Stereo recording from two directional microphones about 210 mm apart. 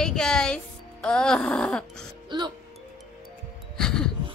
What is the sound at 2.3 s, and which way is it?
Music, 20° right (ahead or behind).